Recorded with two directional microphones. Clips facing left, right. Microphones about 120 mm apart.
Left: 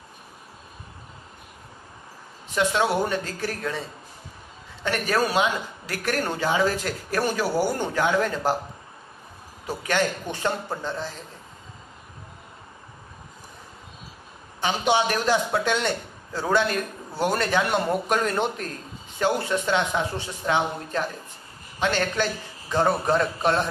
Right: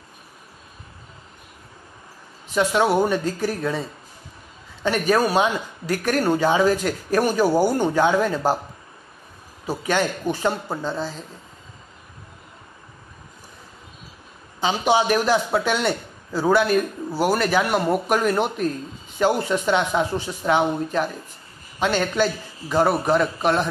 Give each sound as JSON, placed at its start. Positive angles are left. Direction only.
{"t": 2.5, "sound": "speech", "side_deg": -15}
{"t": 4.8, "sound": "speech", "side_deg": -15}
{"t": 9.7, "sound": "speech", "side_deg": -15}
{"t": 14.6, "sound": "speech", "side_deg": -15}